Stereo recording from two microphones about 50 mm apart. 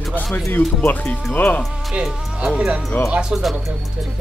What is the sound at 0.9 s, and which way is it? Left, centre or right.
Speech, left.